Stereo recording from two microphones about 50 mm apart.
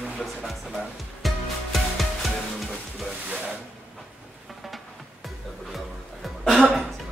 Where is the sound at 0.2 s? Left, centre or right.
Centre.